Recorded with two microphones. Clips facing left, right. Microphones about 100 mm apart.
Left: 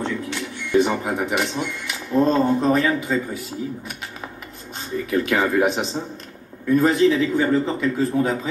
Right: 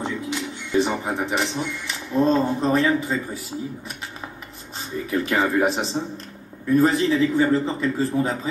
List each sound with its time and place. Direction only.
0.0 s music: 20° right (ahead or behind)
0.7 s speech: centre (ahead or behind)
5.1 s speech: centre (ahead or behind)